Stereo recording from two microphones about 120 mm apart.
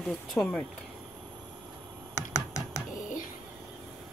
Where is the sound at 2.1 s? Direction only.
25° left (ahead or behind).